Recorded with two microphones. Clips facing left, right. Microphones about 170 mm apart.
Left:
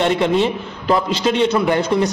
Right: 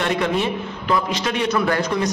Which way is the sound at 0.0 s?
30° left (ahead or behind).